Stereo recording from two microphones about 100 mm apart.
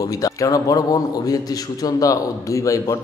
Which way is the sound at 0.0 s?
35° left (ahead or behind).